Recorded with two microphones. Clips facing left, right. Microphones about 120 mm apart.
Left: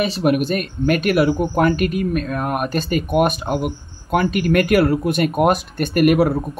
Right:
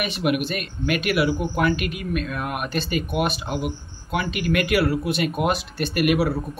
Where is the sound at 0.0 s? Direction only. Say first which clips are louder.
Left 5 dB; 35° left (ahead or behind).